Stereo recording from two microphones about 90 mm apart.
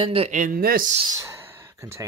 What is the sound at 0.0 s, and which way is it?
Speech, 90° right.